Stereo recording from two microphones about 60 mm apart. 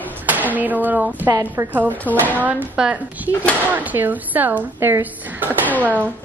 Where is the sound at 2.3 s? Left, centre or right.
Right.